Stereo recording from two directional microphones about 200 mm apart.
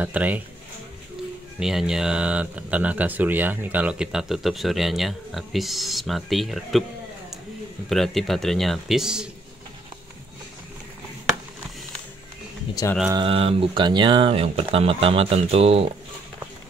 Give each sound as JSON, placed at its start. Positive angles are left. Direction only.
{"t": 0.0, "sound": "speech", "side_deg": -10}
{"t": 1.6, "sound": "speech", "side_deg": -5}
{"t": 7.9, "sound": "speech", "side_deg": 0}
{"t": 13.1, "sound": "speech", "side_deg": -25}